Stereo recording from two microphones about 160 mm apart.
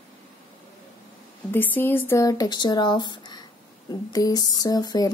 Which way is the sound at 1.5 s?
10° left (ahead or behind).